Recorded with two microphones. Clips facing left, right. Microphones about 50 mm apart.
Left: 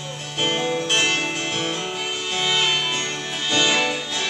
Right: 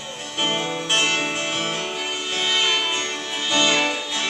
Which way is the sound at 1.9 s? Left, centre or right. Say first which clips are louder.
Even; centre.